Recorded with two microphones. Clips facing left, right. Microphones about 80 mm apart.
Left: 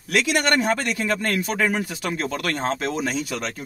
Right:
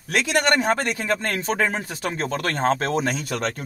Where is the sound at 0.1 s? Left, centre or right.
Right.